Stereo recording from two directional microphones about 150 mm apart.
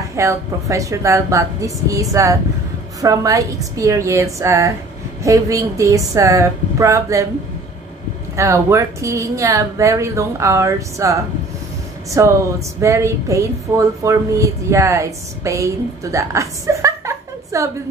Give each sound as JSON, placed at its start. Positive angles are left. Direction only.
{"t": 0.0, "sound": "speech", "side_deg": -20}
{"t": 8.4, "sound": "speech", "side_deg": -20}